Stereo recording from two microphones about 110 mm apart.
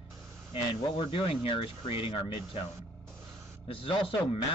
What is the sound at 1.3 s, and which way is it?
Speech, 55° left (ahead or behind).